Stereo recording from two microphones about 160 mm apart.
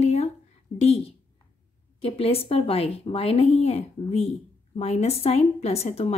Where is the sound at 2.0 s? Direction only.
35° left (ahead or behind).